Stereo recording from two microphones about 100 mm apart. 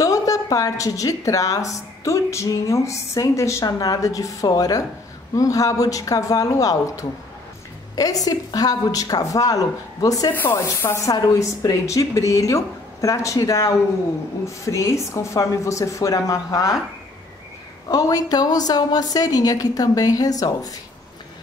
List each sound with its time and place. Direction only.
0.0 s a woman's voice: 35° left (ahead or behind)
17.8 s a woman's voice: 40° left (ahead or behind)